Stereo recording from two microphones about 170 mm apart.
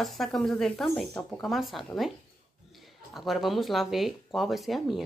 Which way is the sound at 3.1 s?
Centre (ahead or behind).